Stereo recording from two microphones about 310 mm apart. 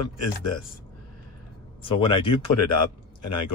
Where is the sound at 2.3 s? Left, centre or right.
Left.